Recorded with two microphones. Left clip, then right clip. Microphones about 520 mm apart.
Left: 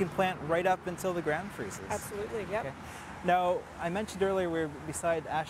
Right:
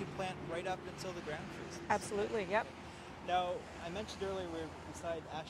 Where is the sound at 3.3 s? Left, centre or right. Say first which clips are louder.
Left 8 dB; left.